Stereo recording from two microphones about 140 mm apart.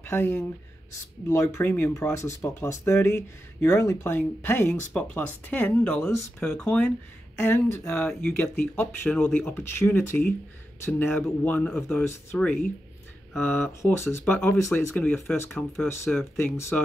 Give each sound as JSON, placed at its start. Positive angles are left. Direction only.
{"t": 0.0, "sound": "speech", "side_deg": 15}
{"t": 7.9, "sound": "speech", "side_deg": 10}